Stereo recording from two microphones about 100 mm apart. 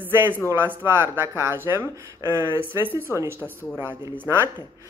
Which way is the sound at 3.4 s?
20° left (ahead or behind).